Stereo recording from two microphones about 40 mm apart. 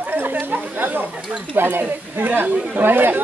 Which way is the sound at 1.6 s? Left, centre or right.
Right.